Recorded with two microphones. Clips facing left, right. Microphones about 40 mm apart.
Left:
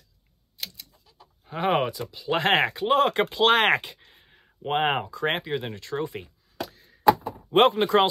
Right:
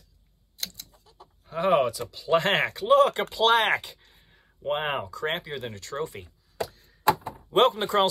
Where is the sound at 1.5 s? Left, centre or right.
Left.